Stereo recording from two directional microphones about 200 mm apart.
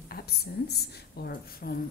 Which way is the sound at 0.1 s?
50° left (ahead or behind).